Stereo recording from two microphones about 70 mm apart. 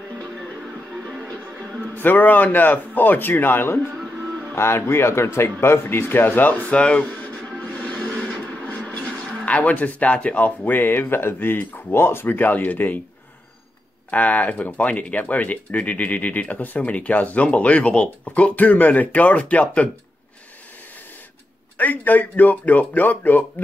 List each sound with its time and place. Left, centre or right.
2.0 s speech: left
14.1 s speech: left
21.7 s speech: left